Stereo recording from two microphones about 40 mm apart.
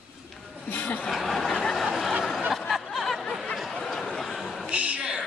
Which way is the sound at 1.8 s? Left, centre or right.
Centre.